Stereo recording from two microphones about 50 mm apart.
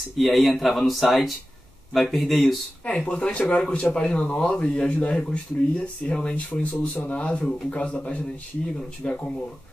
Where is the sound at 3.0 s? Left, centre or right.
Left.